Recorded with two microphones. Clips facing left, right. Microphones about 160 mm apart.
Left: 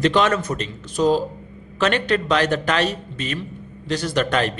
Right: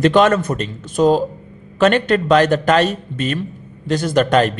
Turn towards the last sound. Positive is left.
turn(degrees=-45)  # may be behind; listen again after turning